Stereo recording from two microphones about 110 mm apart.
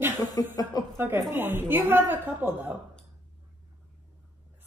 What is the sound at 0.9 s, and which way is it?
A woman's voice, 20° right (ahead or behind).